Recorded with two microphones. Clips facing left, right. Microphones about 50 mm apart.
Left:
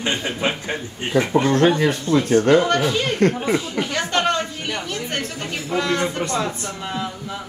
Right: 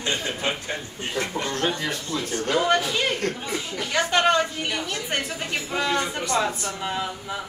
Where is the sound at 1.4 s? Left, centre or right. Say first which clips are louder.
Left 9 dB; left.